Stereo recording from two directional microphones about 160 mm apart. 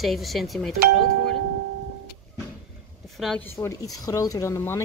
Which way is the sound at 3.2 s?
5° left (ahead or behind).